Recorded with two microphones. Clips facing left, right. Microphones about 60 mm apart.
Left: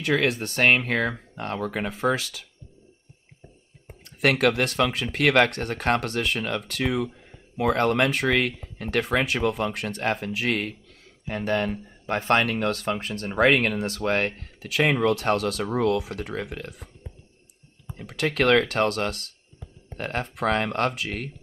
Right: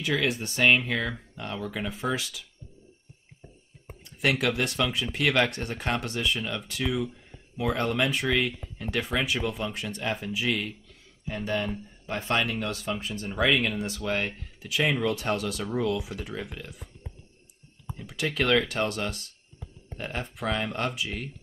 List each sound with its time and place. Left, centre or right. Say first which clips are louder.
0.0 s speech: left 4 dB; left
4.0 s speech: left 5 dB; left
18.0 s speech: left 5 dB; left